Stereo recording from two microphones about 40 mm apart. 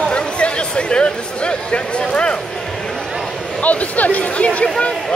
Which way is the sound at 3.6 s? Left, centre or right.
Left.